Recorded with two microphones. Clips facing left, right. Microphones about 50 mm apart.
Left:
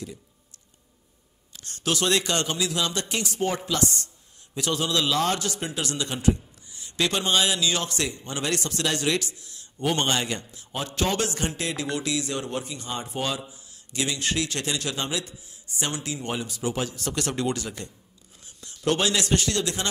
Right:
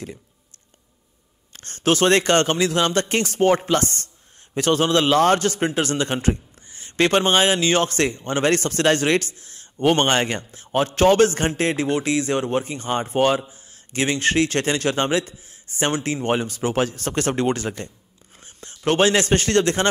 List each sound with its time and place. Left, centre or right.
1.5 s a man's voice: right